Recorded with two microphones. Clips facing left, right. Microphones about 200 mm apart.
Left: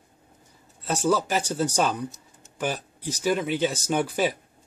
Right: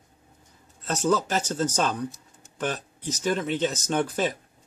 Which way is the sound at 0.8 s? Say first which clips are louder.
Left 1 dB; 10° left (ahead or behind).